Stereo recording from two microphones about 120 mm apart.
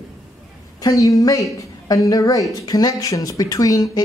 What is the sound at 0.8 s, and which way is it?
A man's voice, 25° left (ahead or behind).